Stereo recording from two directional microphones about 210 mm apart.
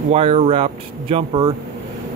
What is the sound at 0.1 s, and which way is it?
Speech, 30° right (ahead or behind).